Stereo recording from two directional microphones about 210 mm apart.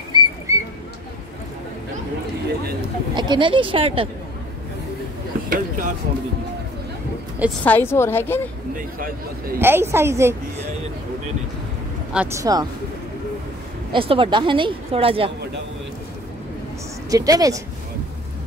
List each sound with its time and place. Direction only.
0.1 s bird: 20° right (ahead or behind)
3.2 s speech: 20° right (ahead or behind)
5.5 s speech: 40° right (ahead or behind)
7.6 s a woman's voice: 10° left (ahead or behind)
8.7 s a man's voice: 40° right (ahead or behind)
9.6 s a woman's voice: 10° right (ahead or behind)
12.1 s a woman's voice: 10° right (ahead or behind)
13.9 s a woman's voice: 25° right (ahead or behind)
17.1 s a woman's voice: 15° right (ahead or behind)